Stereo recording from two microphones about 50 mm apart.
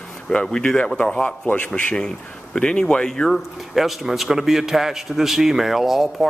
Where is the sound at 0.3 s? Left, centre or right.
Centre.